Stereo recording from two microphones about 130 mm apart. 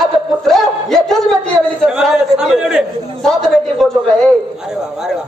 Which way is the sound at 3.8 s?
Centre (ahead or behind).